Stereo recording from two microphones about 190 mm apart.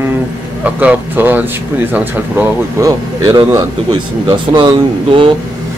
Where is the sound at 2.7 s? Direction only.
20° right (ahead or behind).